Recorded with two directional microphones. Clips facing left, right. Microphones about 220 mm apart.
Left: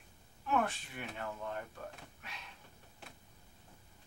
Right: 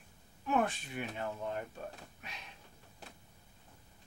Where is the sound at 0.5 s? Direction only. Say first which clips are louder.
Right 2 dB; 20° right (ahead or behind).